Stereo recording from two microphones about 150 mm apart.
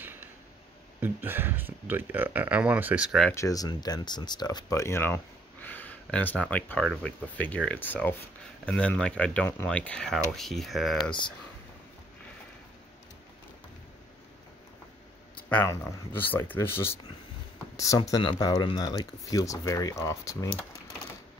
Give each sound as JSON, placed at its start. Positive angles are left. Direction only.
{"t": 1.0, "sound": "speech", "side_deg": -15}
{"t": 3.3, "sound": "speech", "side_deg": 25}
{"t": 15.5, "sound": "speech", "side_deg": 15}